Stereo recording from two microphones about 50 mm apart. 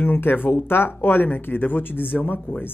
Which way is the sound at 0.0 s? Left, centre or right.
Left.